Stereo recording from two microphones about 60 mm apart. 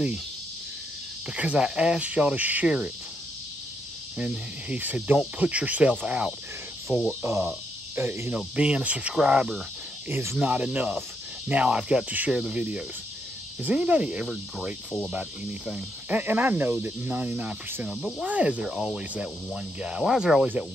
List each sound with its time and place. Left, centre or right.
1.3 s speech: centre
4.2 s speech: centre
7.1 s cricket: right
7.9 s speech: right
8.4 s speech: centre
13.6 s speech: right
16.1 s speech: right; by 20.4 s centre